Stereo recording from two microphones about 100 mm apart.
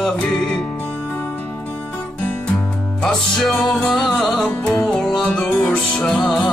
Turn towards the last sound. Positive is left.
turn(degrees=5)  # may be behind; listen again after turning